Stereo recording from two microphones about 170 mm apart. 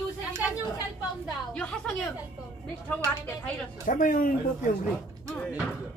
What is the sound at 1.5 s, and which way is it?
A woman's voice, 5° left (ahead or behind).